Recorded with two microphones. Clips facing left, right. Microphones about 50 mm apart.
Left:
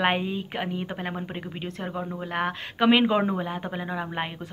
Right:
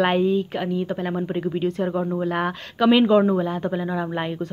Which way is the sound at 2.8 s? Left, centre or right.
Centre.